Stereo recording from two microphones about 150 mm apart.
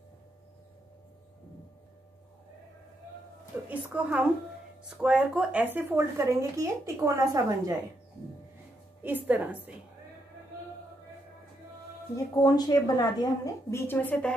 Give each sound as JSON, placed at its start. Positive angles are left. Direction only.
{"t": 3.6, "sound": "speech", "side_deg": -10}
{"t": 9.0, "sound": "speech", "side_deg": -10}
{"t": 12.4, "sound": "a woman's voice", "side_deg": 25}